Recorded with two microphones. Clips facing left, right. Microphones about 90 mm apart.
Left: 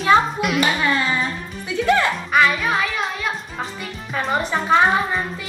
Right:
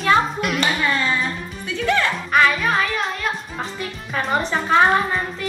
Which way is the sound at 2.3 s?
5° left (ahead or behind).